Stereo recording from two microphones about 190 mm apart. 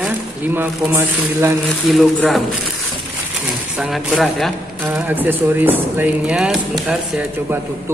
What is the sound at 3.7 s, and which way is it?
Speech, centre (ahead or behind).